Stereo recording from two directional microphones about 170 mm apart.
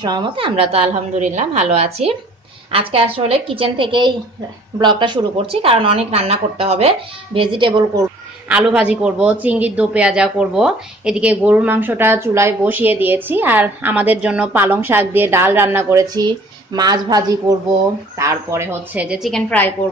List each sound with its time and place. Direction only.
0.0 s a woman's voice: 25° right (ahead or behind)
8.5 s a woman's voice: 10° right (ahead or behind)